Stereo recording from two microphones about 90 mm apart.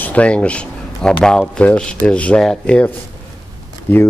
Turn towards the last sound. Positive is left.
turn(degrees=20)  # may be behind; listen again after turning